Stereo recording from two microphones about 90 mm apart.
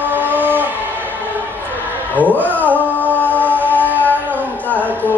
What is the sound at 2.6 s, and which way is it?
Music, 20° left (ahead or behind).